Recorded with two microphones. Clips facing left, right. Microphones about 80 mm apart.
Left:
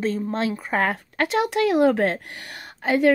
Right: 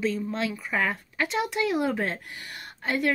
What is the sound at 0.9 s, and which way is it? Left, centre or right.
Speech, left.